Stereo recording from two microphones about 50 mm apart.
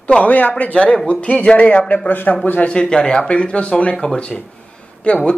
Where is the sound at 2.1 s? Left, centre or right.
Left.